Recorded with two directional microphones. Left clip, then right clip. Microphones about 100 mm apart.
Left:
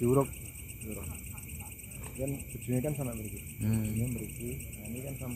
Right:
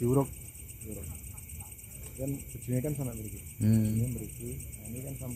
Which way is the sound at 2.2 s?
25° right (ahead or behind).